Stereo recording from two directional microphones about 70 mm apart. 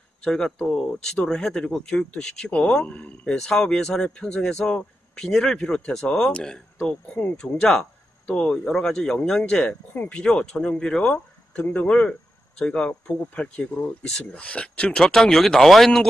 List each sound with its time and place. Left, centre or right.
0.2 s speech: centre
3.3 s speech: centre